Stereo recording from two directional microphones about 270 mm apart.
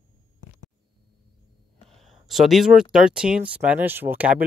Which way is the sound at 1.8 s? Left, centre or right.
Centre.